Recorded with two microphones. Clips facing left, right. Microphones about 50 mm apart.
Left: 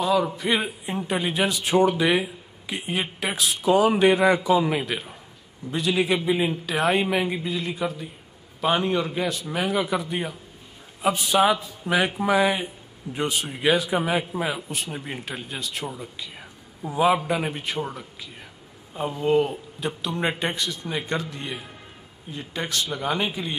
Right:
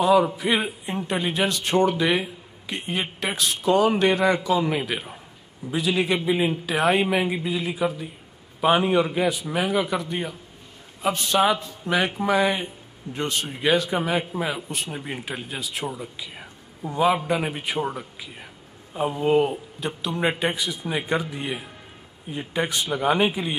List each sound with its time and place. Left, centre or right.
0.0 s a man's voice: centre
4.6 s a man's voice: centre
19.8 s a man's voice: centre